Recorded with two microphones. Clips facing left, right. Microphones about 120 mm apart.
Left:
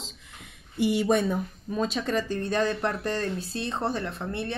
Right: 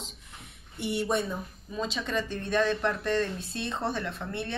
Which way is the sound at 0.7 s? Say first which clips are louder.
Left 6 dB; 90° left.